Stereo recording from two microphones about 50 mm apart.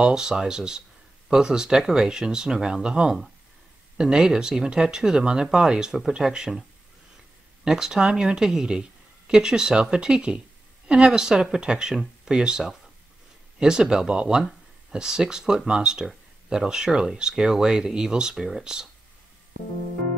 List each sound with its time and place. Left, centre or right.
0.0 s speech: centre
7.6 s speech: centre
18.3 s speech: centre